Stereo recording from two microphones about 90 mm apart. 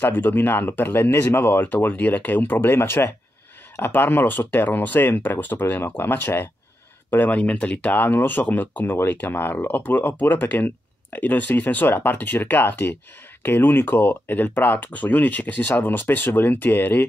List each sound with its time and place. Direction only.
0.0 s speech: 20° left (ahead or behind)